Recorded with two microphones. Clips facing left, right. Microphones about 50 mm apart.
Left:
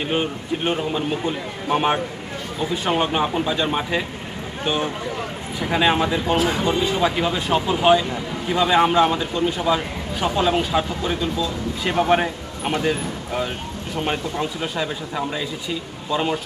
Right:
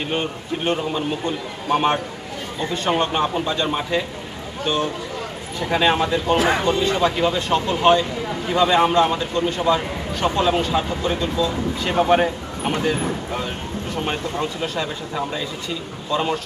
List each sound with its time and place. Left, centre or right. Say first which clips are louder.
0.0 s speech: left 1 dB; centre
6.3 s speech: right 4 dB; right
6.6 s speech: right 1 dB; centre